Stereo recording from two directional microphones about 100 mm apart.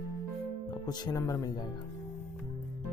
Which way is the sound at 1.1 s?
30° left (ahead or behind).